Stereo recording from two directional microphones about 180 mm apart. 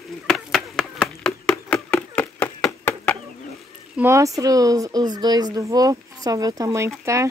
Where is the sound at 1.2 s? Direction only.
5° left (ahead or behind).